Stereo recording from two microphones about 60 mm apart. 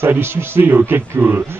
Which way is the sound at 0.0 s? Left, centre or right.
Right.